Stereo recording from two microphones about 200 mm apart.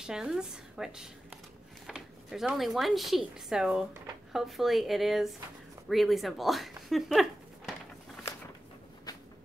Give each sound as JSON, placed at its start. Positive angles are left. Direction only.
{"t": 0.0, "sound": "speech", "side_deg": -5}